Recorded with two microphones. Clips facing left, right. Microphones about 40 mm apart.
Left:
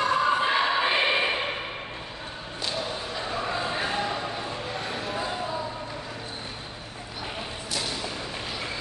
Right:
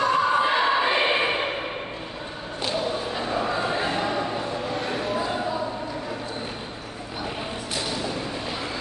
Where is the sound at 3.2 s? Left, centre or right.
Centre.